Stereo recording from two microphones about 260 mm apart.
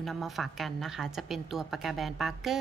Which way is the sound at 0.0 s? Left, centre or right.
Centre.